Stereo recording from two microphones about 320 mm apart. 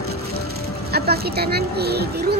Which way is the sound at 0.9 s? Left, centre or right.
Right.